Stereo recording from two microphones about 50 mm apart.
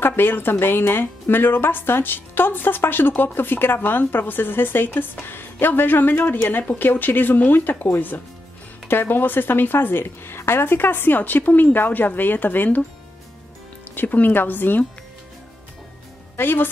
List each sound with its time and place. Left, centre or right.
0.0 s speech: left
13.9 s speech: left
16.3 s a woman's voice: left